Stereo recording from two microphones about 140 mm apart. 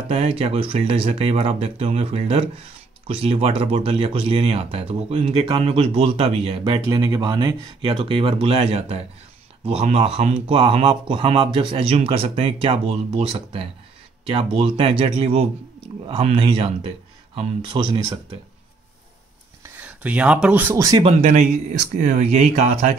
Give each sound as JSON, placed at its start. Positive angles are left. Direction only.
{"t": 0.1, "sound": "speech", "side_deg": -45}
{"t": 7.8, "sound": "speech", "side_deg": -40}
{"t": 19.8, "sound": "speech", "side_deg": -10}
{"t": 20.7, "sound": "speech", "side_deg": -25}
{"t": 21.0, "sound": "speech", "side_deg": -50}